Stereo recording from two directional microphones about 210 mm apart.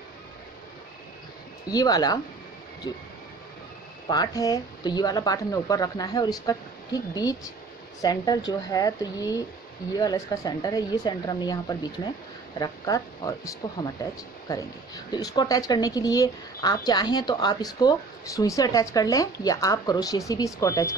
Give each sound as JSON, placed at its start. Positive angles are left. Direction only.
{"t": 1.7, "sound": "speech", "side_deg": 15}
{"t": 4.1, "sound": "speech", "side_deg": 15}
{"t": 15.0, "sound": "speech", "side_deg": 20}